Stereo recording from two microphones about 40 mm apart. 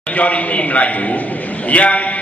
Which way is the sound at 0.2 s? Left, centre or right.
Left.